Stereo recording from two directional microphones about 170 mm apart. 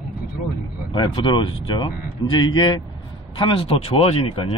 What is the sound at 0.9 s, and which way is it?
Speech, 30° left (ahead or behind).